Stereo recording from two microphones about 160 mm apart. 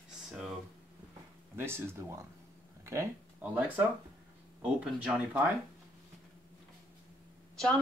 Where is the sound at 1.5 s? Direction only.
15° right (ahead or behind).